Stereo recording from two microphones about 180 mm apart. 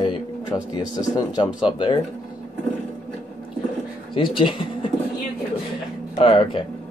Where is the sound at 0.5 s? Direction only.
20° left (ahead or behind).